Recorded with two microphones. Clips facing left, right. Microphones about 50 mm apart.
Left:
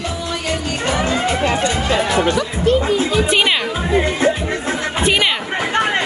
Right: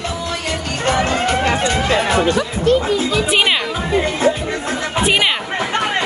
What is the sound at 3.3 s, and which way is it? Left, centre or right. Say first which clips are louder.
Speech: even; centre.